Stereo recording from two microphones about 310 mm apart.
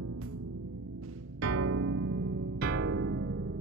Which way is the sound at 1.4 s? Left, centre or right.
Right.